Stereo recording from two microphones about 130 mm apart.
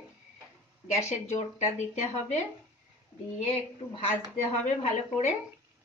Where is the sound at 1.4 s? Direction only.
65° left (ahead or behind).